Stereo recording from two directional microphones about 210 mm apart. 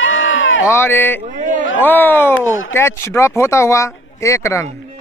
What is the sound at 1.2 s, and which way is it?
Speech, 35° right (ahead or behind).